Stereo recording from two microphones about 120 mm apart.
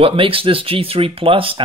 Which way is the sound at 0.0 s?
50° right (ahead or behind).